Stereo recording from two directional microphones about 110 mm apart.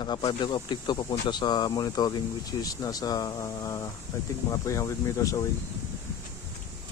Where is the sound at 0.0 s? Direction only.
45° left (ahead or behind).